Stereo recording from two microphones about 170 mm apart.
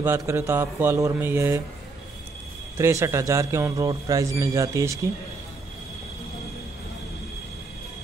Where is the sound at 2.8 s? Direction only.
15° right (ahead or behind).